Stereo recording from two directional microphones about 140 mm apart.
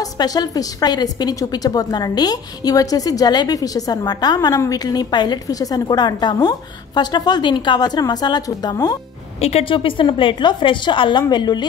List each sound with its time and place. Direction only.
0.2 s a woman's voice: 30° left (ahead or behind)
9.4 s a woman's voice: 45° left (ahead or behind); by 11.6 s 30° left (ahead or behind)